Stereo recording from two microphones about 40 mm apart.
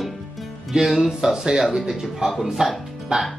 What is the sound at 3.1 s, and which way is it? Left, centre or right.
Speech, centre.